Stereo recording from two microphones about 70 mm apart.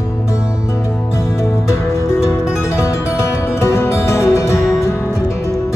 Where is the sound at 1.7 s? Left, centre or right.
Left.